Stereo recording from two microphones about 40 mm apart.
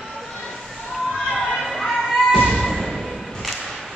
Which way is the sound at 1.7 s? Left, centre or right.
Centre.